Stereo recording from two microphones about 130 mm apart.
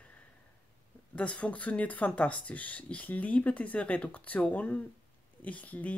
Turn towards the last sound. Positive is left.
turn(degrees=10)  # may be behind; listen again after turning